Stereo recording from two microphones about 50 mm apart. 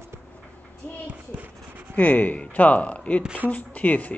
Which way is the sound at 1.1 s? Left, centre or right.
Right.